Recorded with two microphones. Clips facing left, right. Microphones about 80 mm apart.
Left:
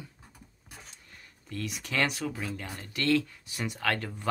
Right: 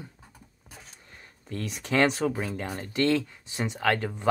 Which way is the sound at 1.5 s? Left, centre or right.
Right.